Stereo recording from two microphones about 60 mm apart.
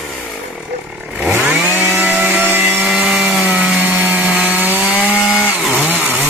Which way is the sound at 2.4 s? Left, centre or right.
Right.